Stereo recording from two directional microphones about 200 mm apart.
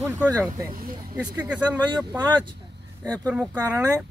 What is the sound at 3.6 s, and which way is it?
Speech, 15° right (ahead or behind).